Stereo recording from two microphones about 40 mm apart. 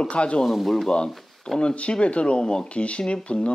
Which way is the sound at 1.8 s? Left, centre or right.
Left.